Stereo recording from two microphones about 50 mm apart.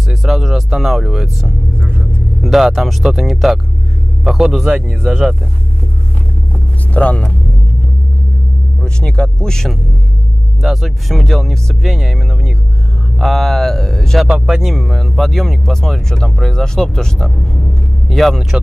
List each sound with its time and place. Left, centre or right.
0.1 s speech: centre
6.9 s speech: left
8.8 s speech: centre
10.6 s speech: centre
14.3 s speech: centre
14.7 s speech: centre